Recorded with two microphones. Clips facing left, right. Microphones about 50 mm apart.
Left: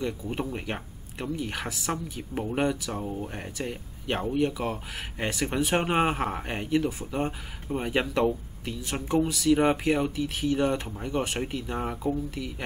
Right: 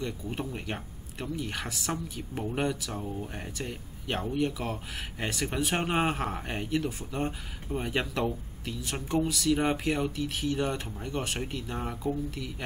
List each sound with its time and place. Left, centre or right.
0.0 s speech: centre
3.0 s speech: centre
3.3 s speech: centre